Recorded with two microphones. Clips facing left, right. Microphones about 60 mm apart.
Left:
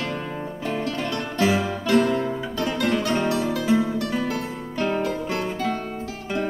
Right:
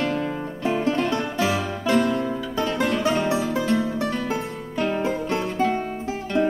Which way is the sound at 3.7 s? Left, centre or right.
Centre.